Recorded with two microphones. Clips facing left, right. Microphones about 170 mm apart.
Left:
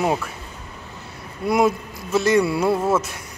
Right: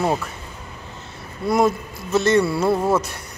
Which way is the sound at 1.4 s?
10° left (ahead or behind).